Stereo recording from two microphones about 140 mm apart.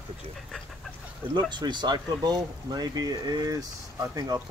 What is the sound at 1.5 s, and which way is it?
Speech, 30° right (ahead or behind).